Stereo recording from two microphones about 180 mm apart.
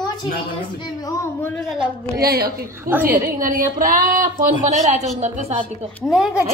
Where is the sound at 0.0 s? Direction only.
25° left (ahead or behind).